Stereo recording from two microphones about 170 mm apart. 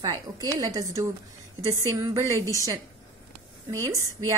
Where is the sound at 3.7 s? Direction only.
20° right (ahead or behind).